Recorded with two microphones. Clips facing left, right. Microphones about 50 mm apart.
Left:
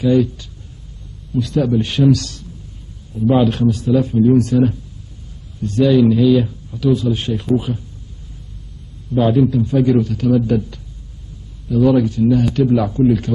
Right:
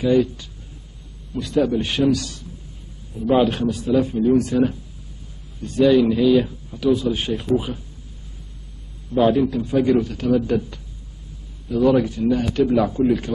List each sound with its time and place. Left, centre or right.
0.0 s a man's voice: centre
9.1 s a man's voice: centre